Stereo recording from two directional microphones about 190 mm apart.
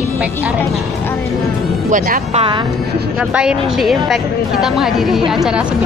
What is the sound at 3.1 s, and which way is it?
A woman's voice, 5° right (ahead or behind).